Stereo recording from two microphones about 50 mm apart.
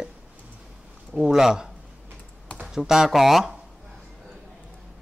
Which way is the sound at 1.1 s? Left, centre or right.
Centre.